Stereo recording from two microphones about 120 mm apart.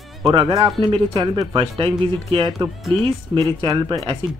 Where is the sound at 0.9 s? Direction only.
40° right (ahead or behind).